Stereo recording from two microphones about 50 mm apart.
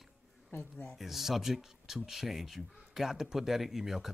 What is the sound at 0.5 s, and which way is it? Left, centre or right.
Speech, left.